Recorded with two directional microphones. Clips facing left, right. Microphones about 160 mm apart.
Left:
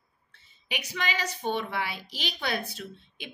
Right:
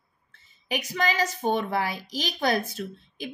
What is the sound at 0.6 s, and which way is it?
A woman's voice, 45° right (ahead or behind).